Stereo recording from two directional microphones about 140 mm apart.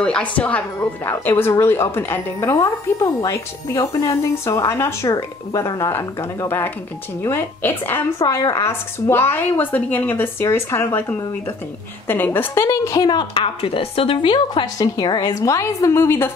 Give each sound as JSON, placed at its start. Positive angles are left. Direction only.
{"t": 0.0, "sound": "a woman's voice", "side_deg": 10}